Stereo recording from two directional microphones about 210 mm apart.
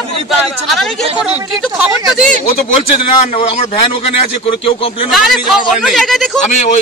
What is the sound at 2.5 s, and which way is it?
A man's voice, 30° left (ahead or behind).